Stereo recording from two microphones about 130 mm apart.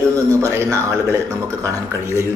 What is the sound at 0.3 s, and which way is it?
Speech, 25° right (ahead or behind).